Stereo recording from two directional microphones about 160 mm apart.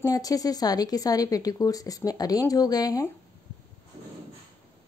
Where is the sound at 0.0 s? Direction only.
20° left (ahead or behind).